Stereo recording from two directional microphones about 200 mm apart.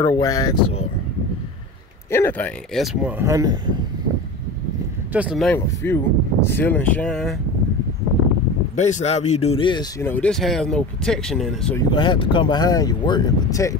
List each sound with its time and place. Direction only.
0.0 s speech: 20° left (ahead or behind)
2.0 s speech: 10° left (ahead or behind); by 3.7 s 20° right (ahead or behind)
5.1 s speech: 5° right (ahead or behind)
5.5 s speech: 10° left (ahead or behind)
8.7 s speech: 35° left (ahead or behind); by 11.7 s centre (ahead or behind)
11.7 s speech: 25° left (ahead or behind)